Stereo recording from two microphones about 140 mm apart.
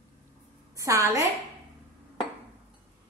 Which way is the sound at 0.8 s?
20° right (ahead or behind).